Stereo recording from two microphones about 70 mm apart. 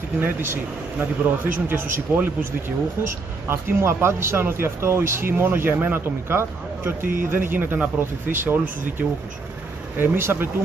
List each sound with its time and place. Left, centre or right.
0.2 s speech: right